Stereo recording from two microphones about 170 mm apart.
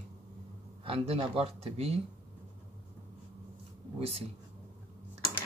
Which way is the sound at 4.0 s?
35° right (ahead or behind).